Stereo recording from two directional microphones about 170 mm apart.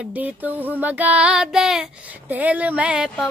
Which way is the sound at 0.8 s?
10° right (ahead or behind).